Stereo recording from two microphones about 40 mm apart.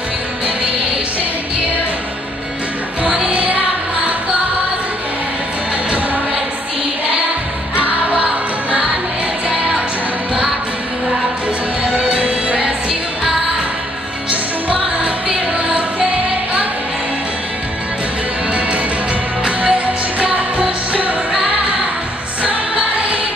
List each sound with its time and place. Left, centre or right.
7.7 s music: right
12.0 s music: right
14.3 s music: right
19.4 s music: right